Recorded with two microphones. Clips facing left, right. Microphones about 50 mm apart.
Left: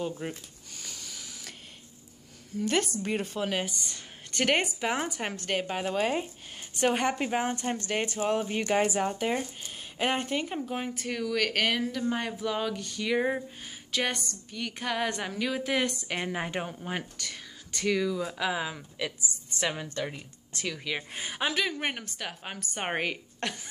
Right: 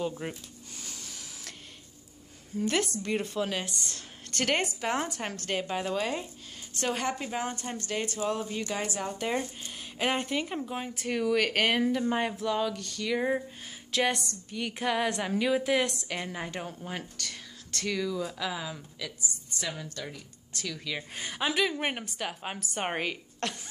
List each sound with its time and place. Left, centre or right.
0.1 s speech: centre
1.1 s a sound: centre
2.7 s a woman's voice: centre; by 8.8 s left
8.8 s a woman's voice: left
9.2 s speech: centre
12.4 s a woman's voice: centre
13.9 s a woman's voice: centre
16.1 s a woman's voice: left
17.2 s speech: centre
18.5 s a woman's voice: left
20.7 s a woman's voice: centre
21.5 s a woman's voice: centre